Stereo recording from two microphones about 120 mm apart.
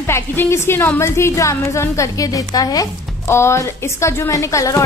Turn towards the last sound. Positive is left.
turn(degrees=25)  # may be behind; listen again after turning